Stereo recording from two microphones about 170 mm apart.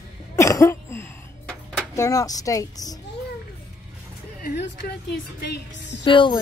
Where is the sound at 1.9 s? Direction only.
20° left (ahead or behind).